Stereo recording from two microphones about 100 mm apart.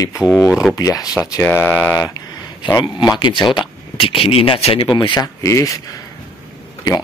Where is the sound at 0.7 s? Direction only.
35° left (ahead or behind).